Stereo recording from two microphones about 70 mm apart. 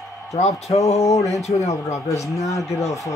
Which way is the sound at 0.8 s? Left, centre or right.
Left.